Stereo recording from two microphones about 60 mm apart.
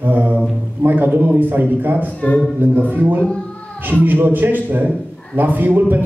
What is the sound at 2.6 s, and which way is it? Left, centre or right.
A man's voice, right.